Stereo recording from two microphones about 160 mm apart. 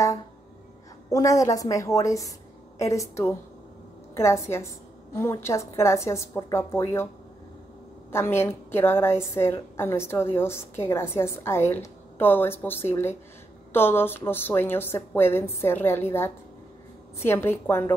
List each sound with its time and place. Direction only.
1.1 s a woman's voice: 20° left (ahead or behind)
8.1 s a woman's voice: 15° left (ahead or behind)